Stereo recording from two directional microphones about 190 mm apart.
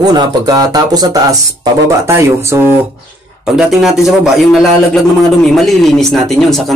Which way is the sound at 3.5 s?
Centre (ahead or behind).